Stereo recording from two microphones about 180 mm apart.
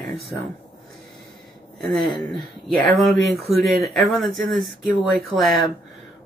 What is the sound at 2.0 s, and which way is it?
Speech, 25° left (ahead or behind).